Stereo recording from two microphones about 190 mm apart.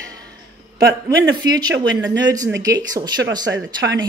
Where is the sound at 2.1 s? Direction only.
20° right (ahead or behind).